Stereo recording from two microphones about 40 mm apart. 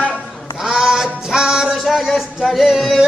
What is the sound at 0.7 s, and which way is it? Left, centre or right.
Music, centre.